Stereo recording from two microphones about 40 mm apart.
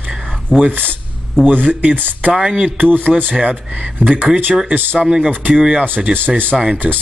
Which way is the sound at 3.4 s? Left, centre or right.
Right.